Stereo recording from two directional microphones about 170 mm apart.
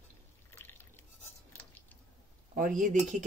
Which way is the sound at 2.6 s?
50° right (ahead or behind).